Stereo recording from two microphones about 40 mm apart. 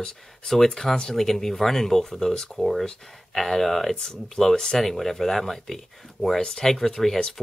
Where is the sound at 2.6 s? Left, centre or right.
Centre.